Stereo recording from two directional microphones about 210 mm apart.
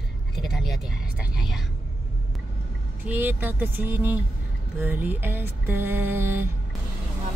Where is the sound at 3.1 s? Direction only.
10° right (ahead or behind).